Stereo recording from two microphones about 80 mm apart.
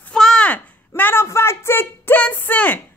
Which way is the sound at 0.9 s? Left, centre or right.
Left.